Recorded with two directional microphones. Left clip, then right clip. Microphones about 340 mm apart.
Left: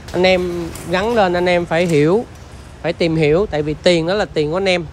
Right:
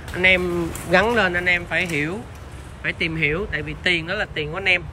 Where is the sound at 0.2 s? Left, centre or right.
Centre.